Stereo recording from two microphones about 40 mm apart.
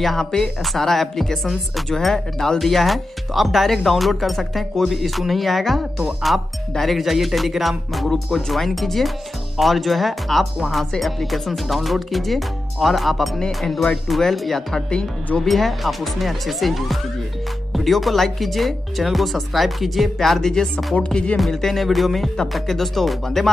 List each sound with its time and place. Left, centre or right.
0.0 s speech: centre
20.7 s speech: left
21.5 s speech: centre
21.7 s speech: centre